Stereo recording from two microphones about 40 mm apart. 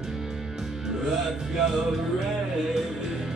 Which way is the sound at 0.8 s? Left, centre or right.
Centre.